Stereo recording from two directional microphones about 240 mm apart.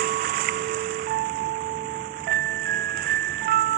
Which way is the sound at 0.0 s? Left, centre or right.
Right.